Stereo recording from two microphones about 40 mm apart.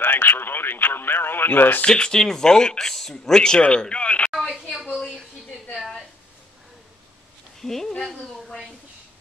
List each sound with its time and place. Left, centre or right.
0.0 s speech: left
1.9 s speech: centre
3.9 s speech: left
4.3 s a sound: centre
7.6 s speech: centre